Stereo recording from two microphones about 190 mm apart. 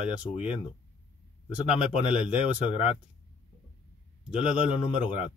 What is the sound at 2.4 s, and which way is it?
Speech, 30° left (ahead or behind).